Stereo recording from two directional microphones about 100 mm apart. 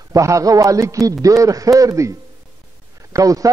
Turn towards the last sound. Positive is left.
turn(degrees=-35)  # may be behind; listen again after turning